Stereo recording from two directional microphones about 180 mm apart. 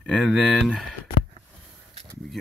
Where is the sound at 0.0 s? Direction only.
Centre (ahead or behind).